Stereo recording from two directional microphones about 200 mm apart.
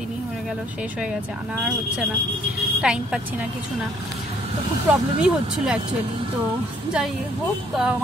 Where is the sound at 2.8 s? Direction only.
5° right (ahead or behind).